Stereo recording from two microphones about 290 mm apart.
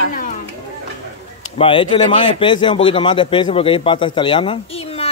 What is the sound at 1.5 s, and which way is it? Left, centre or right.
A man's voice, centre.